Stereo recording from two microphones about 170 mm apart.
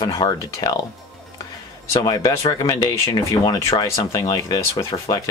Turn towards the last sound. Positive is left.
turn(degrees=20)  # may be behind; listen again after turning